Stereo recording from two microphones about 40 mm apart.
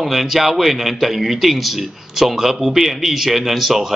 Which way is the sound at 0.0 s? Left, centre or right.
Centre.